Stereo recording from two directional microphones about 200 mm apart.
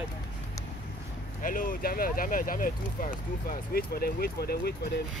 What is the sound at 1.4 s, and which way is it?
Speech, 40° left (ahead or behind).